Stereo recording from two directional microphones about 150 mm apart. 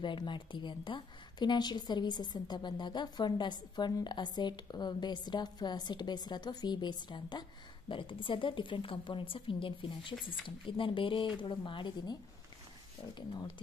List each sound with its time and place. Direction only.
0.0 s a woman's voice: 30° left (ahead or behind)